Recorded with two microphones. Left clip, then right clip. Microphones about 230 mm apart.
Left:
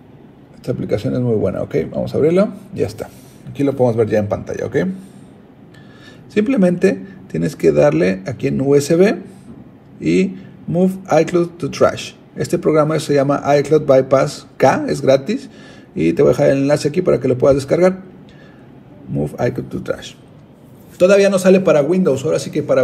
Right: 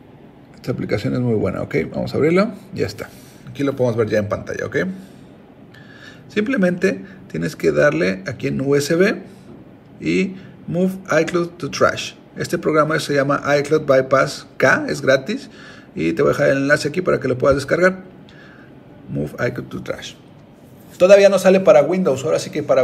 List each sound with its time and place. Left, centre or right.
0.7 s speech: centre
6.3 s speech: centre
19.1 s speech: centre